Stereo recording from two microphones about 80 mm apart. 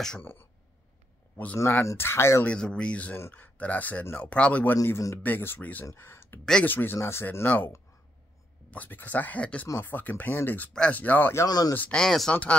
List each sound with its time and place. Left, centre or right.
0.2 s speech: left
1.6 s speech: left
2.4 s speech: centre; by 4.3 s left
4.3 s speech: centre
4.8 s speech: left
5.2 s speech: left
10.7 s speech: centre
11.0 s speech: left
11.4 s speech: left
11.9 s speech: centre
12.3 s speech: centre